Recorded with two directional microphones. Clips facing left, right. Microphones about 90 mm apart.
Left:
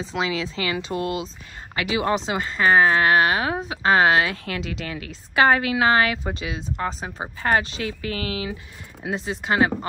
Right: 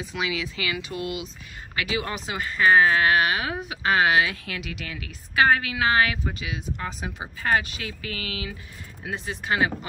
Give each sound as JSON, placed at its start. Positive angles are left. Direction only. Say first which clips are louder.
{"t": 0.0, "sound": "speech", "louder": "left 4 dB", "side_deg": 30}